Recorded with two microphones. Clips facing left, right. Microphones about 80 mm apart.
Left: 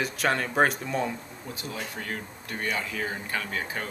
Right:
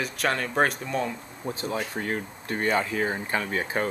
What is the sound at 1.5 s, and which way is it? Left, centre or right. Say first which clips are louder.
Speech: right 7 dB; right.